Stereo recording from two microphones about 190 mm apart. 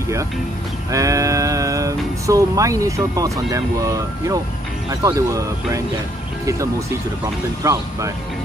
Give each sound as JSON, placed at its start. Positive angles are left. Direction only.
{"t": 0.9, "sound": "speech", "side_deg": -15}
{"t": 7.6, "sound": "speech", "side_deg": -15}